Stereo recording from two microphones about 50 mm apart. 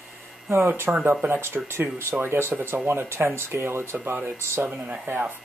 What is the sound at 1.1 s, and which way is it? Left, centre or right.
Mantra, right.